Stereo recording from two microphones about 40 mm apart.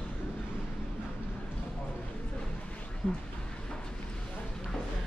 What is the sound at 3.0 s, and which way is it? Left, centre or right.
Speech, centre.